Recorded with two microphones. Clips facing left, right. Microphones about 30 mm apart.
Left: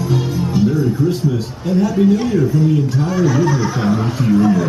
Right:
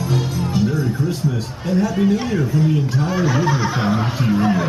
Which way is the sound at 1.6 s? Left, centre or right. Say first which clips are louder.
Left 3 dB; centre.